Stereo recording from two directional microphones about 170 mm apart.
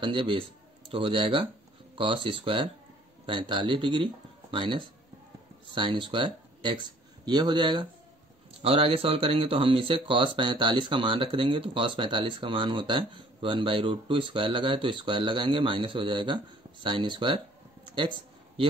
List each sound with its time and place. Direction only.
0.0 s speech: 30° right (ahead or behind)